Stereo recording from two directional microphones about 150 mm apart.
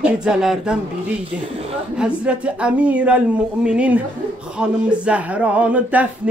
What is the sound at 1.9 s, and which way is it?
Speech, 10° right (ahead or behind).